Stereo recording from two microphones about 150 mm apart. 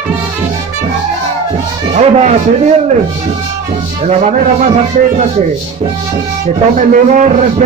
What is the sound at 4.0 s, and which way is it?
Speech, 50° right (ahead or behind).